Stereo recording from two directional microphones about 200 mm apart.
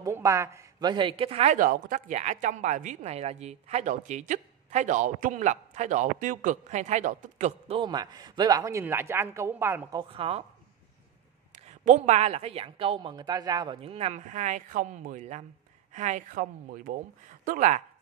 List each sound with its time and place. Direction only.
0.0 s speech: 15° right (ahead or behind)
11.8 s speech: 35° right (ahead or behind)